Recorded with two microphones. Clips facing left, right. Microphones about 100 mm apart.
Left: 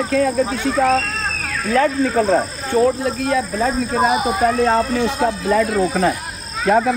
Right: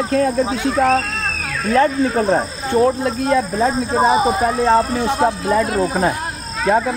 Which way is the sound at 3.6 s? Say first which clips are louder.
Right 2 dB; 25° right (ahead or behind).